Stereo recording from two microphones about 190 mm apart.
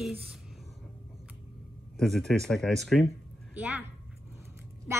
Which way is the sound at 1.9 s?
Centre (ahead or behind).